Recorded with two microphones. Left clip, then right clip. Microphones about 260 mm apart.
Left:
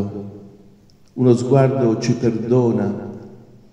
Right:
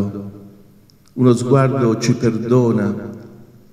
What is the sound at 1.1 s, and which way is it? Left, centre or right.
A man's voice, right.